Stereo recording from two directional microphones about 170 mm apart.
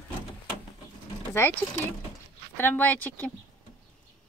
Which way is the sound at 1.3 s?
15° left (ahead or behind).